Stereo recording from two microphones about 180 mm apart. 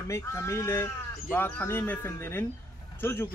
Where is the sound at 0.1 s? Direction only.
15° left (ahead or behind).